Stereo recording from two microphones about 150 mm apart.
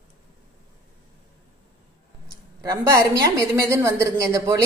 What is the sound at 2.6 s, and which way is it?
A woman's voice, 20° right (ahead or behind).